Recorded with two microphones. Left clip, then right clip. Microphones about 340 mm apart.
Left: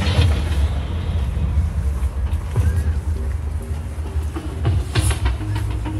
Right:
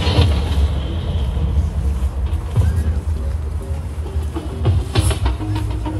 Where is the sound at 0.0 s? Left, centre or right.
Right.